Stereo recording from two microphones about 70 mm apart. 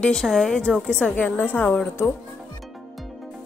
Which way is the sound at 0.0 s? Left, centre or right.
Centre.